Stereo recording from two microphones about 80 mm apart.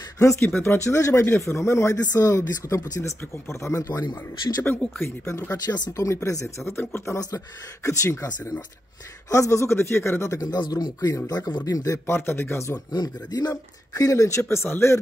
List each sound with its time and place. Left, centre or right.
0.2 s speech: left
3.9 s speech: left
5.0 s speech: left
7.2 s speech: left
8.3 s speech: left
9.3 s speech: left
10.4 s speech: left
12.2 s speech: left
12.9 s speech: left
14.4 s speech: left